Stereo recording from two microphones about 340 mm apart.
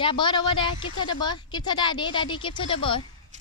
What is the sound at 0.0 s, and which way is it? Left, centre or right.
A woman's voice, centre.